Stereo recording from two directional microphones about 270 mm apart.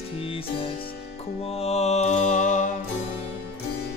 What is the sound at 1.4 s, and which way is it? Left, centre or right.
Music, left.